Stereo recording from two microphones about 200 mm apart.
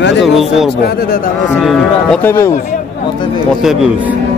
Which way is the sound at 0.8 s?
45° left (ahead or behind).